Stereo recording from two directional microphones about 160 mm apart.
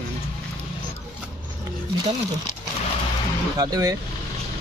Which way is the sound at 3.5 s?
25° right (ahead or behind).